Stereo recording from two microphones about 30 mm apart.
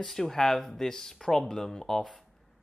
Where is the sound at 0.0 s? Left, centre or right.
Centre.